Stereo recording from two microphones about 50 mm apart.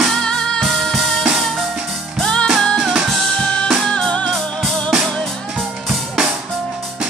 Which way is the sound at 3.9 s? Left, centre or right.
Centre.